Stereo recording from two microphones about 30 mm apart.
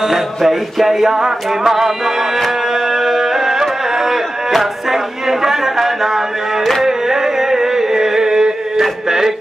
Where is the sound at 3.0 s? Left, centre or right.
Centre.